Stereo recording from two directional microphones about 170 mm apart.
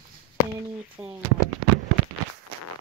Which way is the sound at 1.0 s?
5° right (ahead or behind).